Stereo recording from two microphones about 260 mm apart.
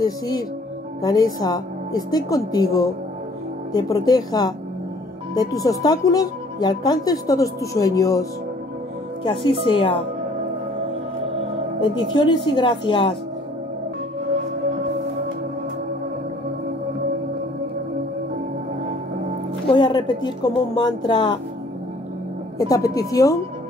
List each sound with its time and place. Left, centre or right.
0.0 s a woman's voice: centre
11.8 s speech: centre
19.7 s speech: centre
22.6 s speech: centre